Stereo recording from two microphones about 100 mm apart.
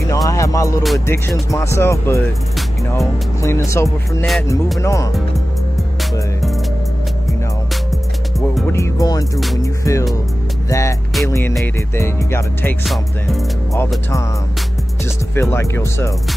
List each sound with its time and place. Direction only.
0.1 s music: 35° left (ahead or behind)
1.0 s speech: 25° left (ahead or behind)
8.7 s speech: 30° left (ahead or behind)
12.8 s music: centre (ahead or behind)
15.3 s speech: 25° left (ahead or behind)